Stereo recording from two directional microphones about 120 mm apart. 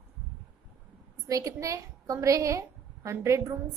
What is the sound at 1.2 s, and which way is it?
A woman's voice, 30° right (ahead or behind).